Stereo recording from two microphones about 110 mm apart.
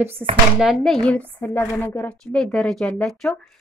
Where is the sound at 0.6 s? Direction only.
Centre (ahead or behind).